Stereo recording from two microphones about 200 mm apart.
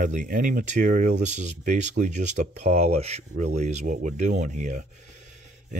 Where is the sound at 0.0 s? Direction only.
40° right (ahead or behind).